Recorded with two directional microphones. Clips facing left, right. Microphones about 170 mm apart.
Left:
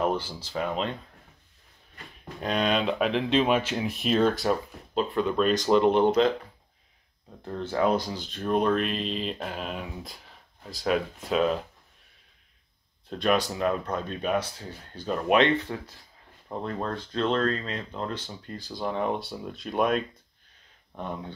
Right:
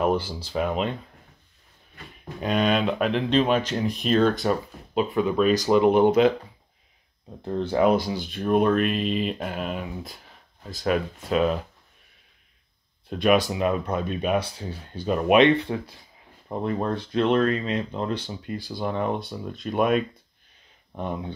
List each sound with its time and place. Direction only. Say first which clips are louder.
0.0 s speech: right 4 dB; 10° right (ahead or behind)
2.4 s speech: right 3 dB; centre (ahead or behind)
7.4 s speech: right 5 dB; 15° right (ahead or behind)
13.1 s speech: right 4 dB; 10° right (ahead or behind)
20.9 s speech: right 4 dB; 15° right (ahead or behind)